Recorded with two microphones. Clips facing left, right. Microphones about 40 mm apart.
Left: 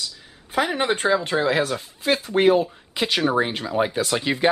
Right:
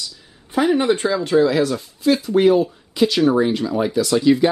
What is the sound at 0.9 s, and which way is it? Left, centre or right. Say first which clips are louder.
Speech: right 4 dB; left.